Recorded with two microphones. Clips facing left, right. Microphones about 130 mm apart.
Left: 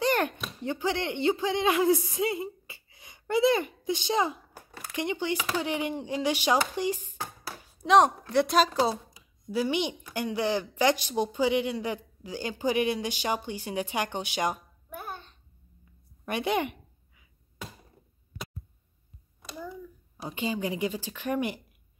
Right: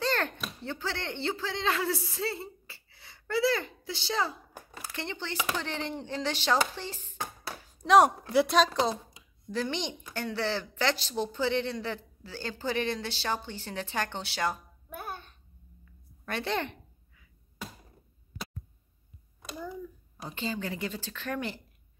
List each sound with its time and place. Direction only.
0.0 s speech: 15° left (ahead or behind)
7.4 s speech: centre (ahead or behind); by 15.0 s 15° left (ahead or behind)
15.0 s babbling: 10° right (ahead or behind)
16.3 s a sound: 15° left (ahead or behind)
20.2 s speech: 15° left (ahead or behind)